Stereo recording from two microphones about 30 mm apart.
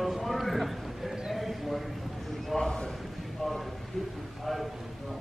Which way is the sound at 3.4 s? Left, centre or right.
Centre.